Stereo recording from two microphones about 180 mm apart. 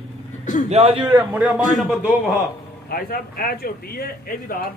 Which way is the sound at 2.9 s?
55° left (ahead or behind).